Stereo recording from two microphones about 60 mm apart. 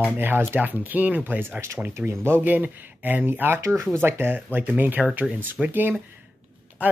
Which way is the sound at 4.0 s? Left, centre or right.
Right.